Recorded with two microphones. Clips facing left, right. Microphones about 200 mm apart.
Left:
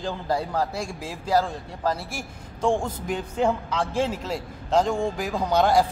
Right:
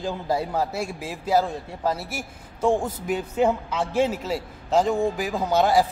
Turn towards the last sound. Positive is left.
turn(degrees=-5)  # may be behind; listen again after turning